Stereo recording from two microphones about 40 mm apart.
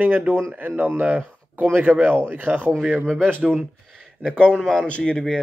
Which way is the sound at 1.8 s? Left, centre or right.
Right.